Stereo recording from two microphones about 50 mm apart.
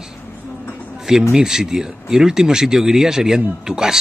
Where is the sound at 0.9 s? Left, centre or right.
Centre.